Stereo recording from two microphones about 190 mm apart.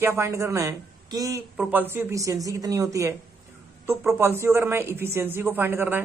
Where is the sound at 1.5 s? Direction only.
5° right (ahead or behind).